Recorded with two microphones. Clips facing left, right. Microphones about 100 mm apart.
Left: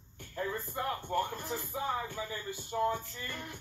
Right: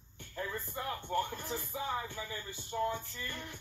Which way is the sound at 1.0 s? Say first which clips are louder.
Left 2 dB; 10° left (ahead or behind).